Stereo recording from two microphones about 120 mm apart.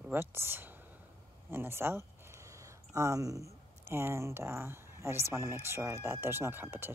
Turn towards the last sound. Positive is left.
turn(degrees=-15)  # may be behind; listen again after turning